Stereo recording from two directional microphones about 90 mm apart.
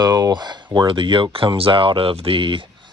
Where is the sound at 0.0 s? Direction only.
45° right (ahead or behind); by 2.6 s 70° right (ahead or behind).